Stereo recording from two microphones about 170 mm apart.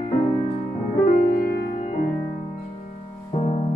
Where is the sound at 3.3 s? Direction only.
40° left (ahead or behind).